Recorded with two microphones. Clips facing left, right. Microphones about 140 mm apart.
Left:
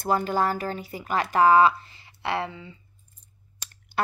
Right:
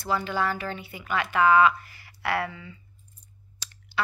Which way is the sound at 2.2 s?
25° left (ahead or behind).